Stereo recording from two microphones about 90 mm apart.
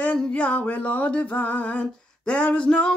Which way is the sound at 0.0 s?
15° left (ahead or behind).